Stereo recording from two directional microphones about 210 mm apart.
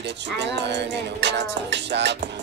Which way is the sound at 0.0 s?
55° right (ahead or behind).